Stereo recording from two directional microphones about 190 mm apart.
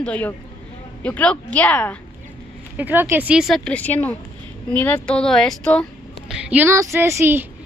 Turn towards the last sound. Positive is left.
turn(degrees=-10)  # may be behind; listen again after turning